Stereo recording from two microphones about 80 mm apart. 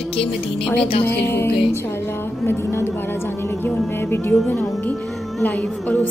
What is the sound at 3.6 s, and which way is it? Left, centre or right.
Music, left.